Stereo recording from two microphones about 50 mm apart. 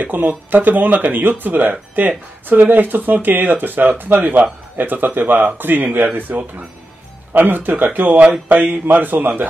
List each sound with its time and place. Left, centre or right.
0.0 s speech: right